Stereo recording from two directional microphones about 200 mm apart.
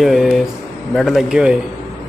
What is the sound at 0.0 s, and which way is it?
Speech, centre (ahead or behind).